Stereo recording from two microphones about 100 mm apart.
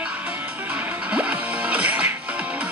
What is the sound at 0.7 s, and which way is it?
Music, 10° right (ahead or behind).